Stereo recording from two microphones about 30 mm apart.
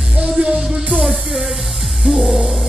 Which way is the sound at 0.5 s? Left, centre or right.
Right.